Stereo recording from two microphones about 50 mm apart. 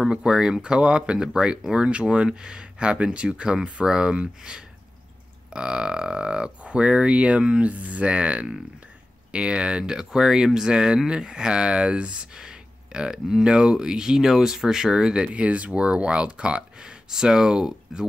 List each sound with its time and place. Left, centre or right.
0.1 s speech: centre